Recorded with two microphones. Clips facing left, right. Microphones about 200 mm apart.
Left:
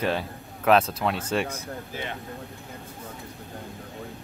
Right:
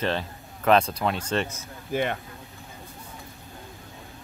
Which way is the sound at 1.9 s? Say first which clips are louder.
Right 11 dB; 55° right (ahead or behind).